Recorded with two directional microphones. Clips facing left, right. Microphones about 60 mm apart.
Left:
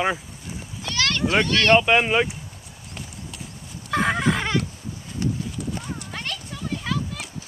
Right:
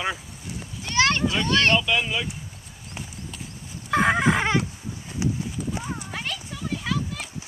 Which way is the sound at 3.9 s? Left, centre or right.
Centre.